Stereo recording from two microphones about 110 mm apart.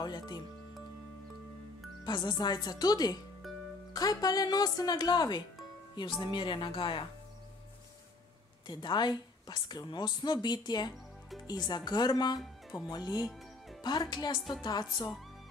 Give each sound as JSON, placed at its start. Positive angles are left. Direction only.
{"t": 0.0, "sound": "a woman's voice", "side_deg": 40}
{"t": 2.0, "sound": "a woman's voice", "side_deg": 40}
{"t": 3.4, "sound": "music", "side_deg": 0}
{"t": 3.9, "sound": "a woman's voice", "side_deg": 35}
{"t": 8.6, "sound": "a woman's voice", "side_deg": 40}
{"t": 13.2, "sound": "music", "side_deg": 0}
{"t": 13.8, "sound": "a woman's voice", "side_deg": 40}